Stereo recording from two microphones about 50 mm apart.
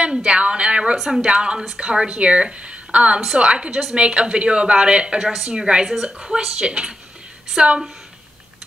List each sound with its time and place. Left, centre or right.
0.0 s a woman's voice: centre
0.9 s a woman's voice: centre
1.2 s a woman's voice: centre